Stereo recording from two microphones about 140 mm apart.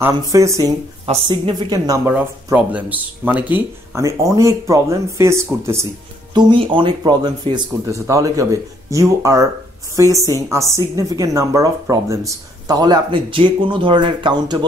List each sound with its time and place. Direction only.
0.0 s a woman's voice: 20° right (ahead or behind)
2.0 s speech: 10° right (ahead or behind)
6.3 s speech: 35° right (ahead or behind)